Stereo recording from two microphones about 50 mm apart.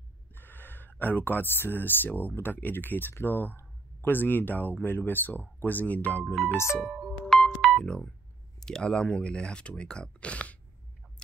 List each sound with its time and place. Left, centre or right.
0.3 s a sound: left
2.0 s speech: left
6.8 s speech: centre
7.2 s music: centre
8.5 s speech: centre